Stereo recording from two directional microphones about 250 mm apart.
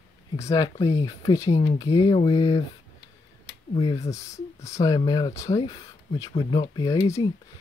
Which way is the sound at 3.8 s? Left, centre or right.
Centre.